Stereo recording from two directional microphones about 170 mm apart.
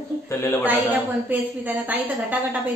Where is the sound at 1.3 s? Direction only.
10° right (ahead or behind).